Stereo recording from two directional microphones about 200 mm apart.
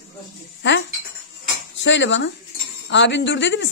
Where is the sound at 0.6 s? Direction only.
65° left (ahead or behind).